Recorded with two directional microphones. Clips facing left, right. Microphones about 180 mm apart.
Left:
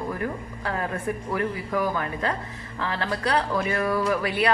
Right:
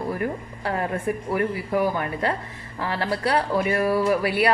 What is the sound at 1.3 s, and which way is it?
Speech, 25° right (ahead or behind).